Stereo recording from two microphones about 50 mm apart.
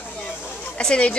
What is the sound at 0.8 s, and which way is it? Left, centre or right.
Speech, centre.